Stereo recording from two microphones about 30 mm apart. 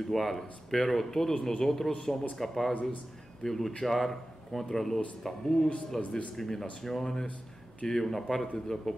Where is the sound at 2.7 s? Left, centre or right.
Left.